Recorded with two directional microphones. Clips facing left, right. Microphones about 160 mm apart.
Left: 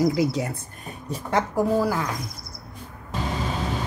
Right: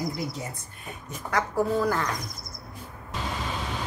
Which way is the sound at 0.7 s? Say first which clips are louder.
Left 6 dB; 35° left (ahead or behind).